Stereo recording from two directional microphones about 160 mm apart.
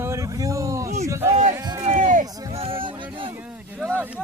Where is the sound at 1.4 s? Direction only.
50° right (ahead or behind).